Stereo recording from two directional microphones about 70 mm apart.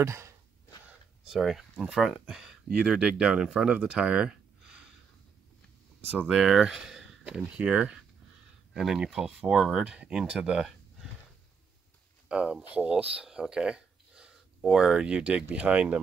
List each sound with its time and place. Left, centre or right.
0.0 s sigh: right
1.2 s speech: centre
3.7 s a sound: centre
6.2 s speech: centre
12.3 s speech: centre